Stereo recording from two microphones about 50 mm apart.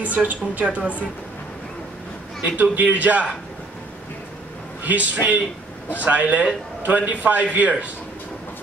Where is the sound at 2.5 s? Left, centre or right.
Right.